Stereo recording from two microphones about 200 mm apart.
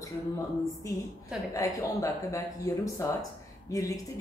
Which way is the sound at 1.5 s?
15° left (ahead or behind).